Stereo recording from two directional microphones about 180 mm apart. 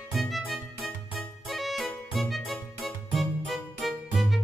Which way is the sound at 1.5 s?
Centre (ahead or behind).